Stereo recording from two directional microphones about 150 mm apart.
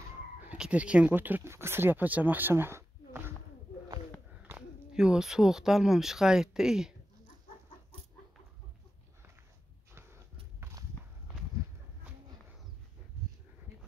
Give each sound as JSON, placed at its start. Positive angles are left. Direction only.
{"t": 0.5, "sound": "speech", "side_deg": -10}
{"t": 4.4, "sound": "speech", "side_deg": -10}
{"t": 10.6, "sound": "walk", "side_deg": -20}